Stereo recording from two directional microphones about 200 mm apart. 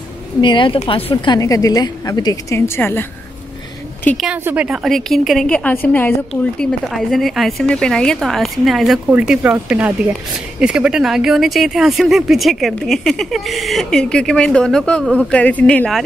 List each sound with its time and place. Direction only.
0.4 s a woman's voice: 25° left (ahead or behind); by 4.3 s 5° left (ahead or behind)
4.3 s speech: 5° right (ahead or behind)